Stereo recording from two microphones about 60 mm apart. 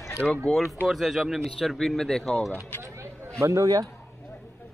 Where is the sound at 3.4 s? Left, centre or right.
Right.